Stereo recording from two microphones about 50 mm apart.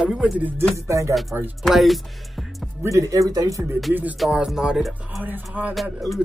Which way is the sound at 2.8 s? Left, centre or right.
Right.